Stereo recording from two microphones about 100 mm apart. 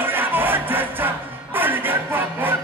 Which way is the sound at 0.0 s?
20° right (ahead or behind).